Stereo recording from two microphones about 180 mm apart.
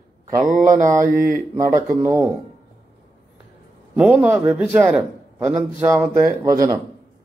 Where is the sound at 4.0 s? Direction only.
5° right (ahead or behind).